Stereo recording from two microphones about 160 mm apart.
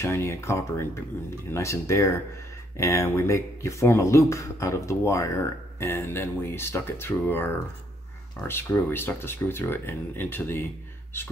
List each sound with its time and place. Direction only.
0.0 s speech: 15° left (ahead or behind)